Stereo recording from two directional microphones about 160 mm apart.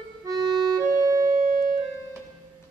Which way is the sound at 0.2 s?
25° right (ahead or behind).